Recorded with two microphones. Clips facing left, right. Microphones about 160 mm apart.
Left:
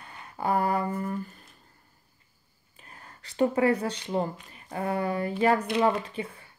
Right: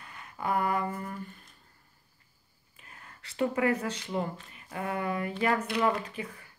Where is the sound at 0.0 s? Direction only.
35° left (ahead or behind).